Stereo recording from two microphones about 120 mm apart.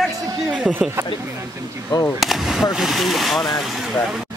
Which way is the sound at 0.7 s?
Centre (ahead or behind).